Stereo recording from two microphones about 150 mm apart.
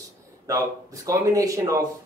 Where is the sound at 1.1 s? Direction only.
20° right (ahead or behind).